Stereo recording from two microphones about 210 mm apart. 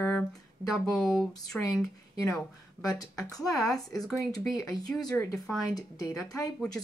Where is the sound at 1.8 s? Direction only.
15° left (ahead or behind).